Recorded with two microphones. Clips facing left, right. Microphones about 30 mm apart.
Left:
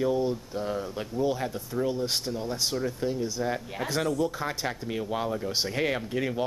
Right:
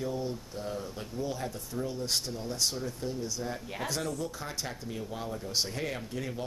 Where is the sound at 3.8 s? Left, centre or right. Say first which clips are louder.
Left 7 dB; centre.